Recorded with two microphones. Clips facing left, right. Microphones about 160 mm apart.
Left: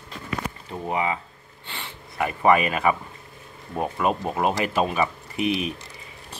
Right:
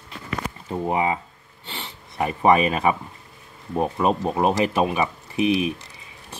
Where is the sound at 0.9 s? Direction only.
30° right (ahead or behind).